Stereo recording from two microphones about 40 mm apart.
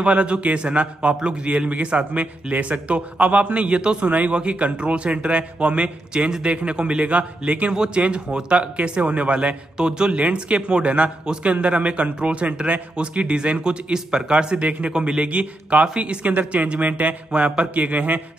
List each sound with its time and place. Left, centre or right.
0.0 s a man's voice: right
7.7 s a man's voice: centre
10.1 s a man's voice: right
17.7 s a man's voice: right